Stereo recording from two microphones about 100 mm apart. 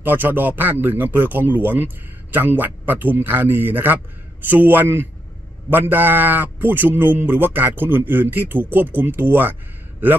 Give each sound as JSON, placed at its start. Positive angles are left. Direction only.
{"t": 0.0, "sound": "a man's voice", "side_deg": -20}